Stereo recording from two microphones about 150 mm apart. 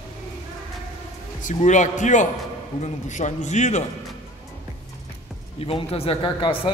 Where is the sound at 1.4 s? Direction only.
55° left (ahead or behind).